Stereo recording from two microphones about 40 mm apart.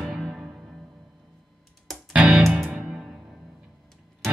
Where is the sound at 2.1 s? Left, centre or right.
Right.